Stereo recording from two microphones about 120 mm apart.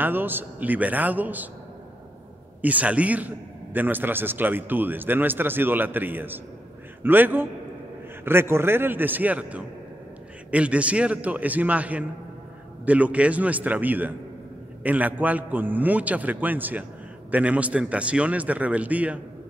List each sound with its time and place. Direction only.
0.0 s a man's voice: 15° right (ahead or behind)
2.6 s a man's voice: 10° right (ahead or behind)